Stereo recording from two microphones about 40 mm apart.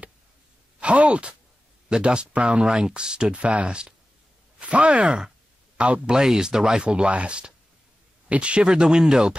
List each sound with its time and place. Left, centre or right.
0.7 s a sound: right
1.9 s speech: right
3.3 s speech: right; by 9.3 s centre